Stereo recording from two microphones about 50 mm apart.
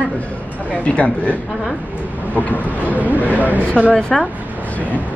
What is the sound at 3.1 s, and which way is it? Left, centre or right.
Speech, right.